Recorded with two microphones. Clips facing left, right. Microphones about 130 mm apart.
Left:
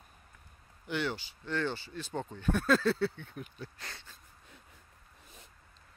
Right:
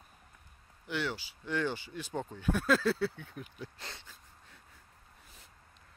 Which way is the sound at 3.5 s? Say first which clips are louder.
Even; 20° right (ahead or behind).